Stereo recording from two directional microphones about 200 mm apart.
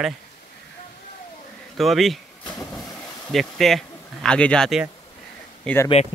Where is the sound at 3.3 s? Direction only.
Centre (ahead or behind).